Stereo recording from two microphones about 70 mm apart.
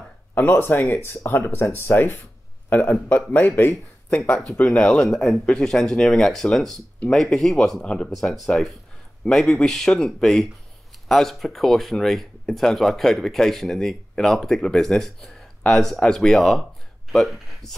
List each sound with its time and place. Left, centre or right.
0.4 s a man's voice: left
8.1 s speech: centre